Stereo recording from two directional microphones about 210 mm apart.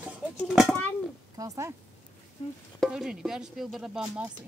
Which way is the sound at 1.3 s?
15° right (ahead or behind).